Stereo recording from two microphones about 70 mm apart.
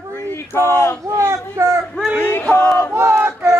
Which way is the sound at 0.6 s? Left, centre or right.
Left.